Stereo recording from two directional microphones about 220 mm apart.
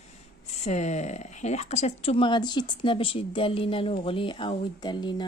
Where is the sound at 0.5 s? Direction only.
30° left (ahead or behind).